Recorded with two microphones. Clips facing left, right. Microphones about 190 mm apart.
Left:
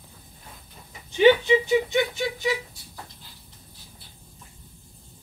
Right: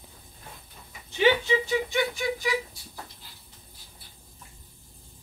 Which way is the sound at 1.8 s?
20° left (ahead or behind).